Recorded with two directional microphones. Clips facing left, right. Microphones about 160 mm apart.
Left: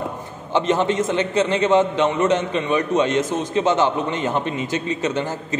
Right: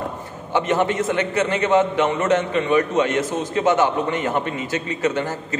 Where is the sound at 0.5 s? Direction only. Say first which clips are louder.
Left 1 dB; 20° left (ahead or behind).